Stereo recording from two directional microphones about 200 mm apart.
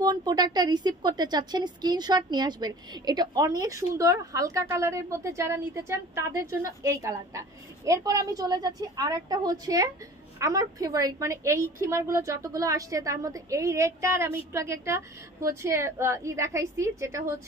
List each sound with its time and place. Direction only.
0.0 s a woman's voice: 20° right (ahead or behind)